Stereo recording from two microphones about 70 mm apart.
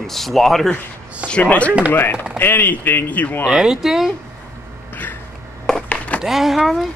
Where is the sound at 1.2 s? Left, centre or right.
Centre.